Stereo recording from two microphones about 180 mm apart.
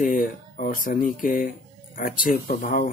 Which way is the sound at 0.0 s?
50° left (ahead or behind).